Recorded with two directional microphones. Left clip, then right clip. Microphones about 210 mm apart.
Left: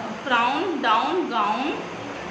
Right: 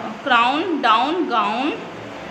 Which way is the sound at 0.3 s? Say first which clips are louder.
Right 5 dB; 50° right (ahead or behind).